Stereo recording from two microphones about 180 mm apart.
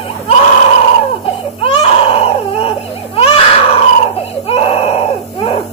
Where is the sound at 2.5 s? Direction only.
35° left (ahead or behind).